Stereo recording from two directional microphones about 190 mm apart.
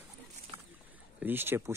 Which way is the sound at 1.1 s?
10° right (ahead or behind).